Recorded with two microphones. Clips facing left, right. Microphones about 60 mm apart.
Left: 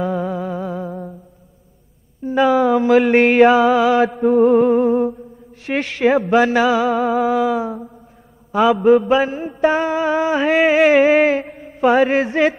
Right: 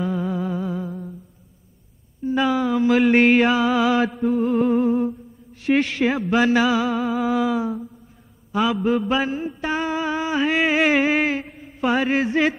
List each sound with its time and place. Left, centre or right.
0.0 s music: left
2.2 s mantra: left
2.6 s a sound: left
2.9 s mantra: left
4.2 s music: left
4.8 s a sound: left
8.5 s mantra: left
9.0 s mantra: left
9.4 s music: left
10.7 s mantra: left
11.4 s mantra: left
11.8 s a sound: left